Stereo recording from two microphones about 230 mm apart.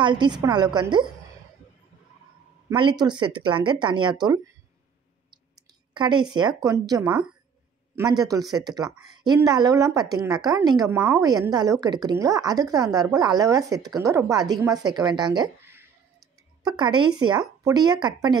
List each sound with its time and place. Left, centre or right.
0.0 s speech: centre
2.7 s speech: right
5.3 s clicking: centre
6.3 s a woman's voice: centre
7.0 s a woman's voice: centre
7.9 s a woman's voice: centre